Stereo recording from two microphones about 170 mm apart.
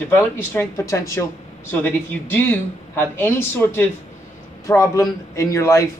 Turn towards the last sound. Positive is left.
turn(degrees=20)  # may be behind; listen again after turning